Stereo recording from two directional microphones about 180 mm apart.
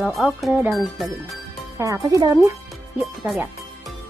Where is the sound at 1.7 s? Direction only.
20° right (ahead or behind).